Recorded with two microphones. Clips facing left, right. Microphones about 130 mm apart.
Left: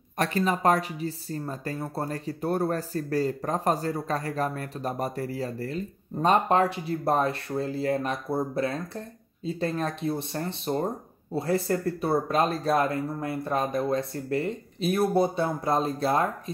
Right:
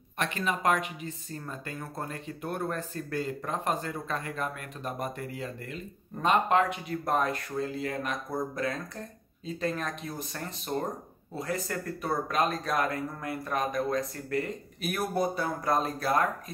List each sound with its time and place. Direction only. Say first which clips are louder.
0.2 s speech: left 5 dB; 35° left (ahead or behind)